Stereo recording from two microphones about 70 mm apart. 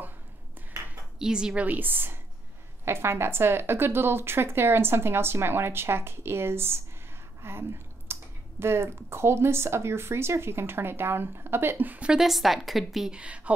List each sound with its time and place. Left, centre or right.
1.2 s a woman's voice: centre; by 6.8 s right
7.4 s a sound: right
8.1 s speech: right
12.1 s a woman's voice: centre
13.1 s a woman's voice: centre